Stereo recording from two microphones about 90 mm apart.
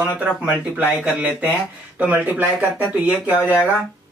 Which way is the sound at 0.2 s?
15° right (ahead or behind).